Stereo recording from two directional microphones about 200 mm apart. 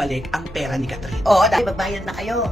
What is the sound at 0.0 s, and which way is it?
Speech, centre (ahead or behind).